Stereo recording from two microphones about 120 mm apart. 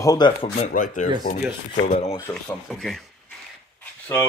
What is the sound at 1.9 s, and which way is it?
Speech, 65° left (ahead or behind).